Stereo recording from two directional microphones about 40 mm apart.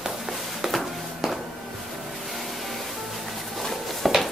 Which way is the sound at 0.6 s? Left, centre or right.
Centre.